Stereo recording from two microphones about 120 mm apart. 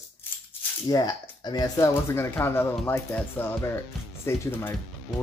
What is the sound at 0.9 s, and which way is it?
Speech, 35° left (ahead or behind).